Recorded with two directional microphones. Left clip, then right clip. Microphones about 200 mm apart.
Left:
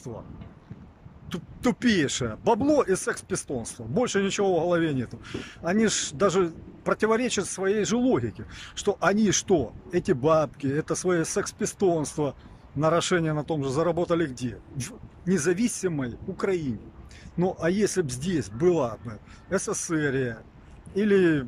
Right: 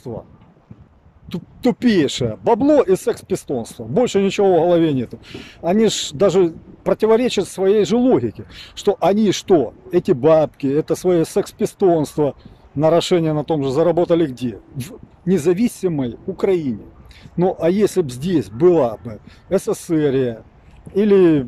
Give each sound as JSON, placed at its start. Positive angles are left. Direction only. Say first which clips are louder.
{"t": 1.3, "sound": "speech", "louder": "right 8 dB", "side_deg": -20}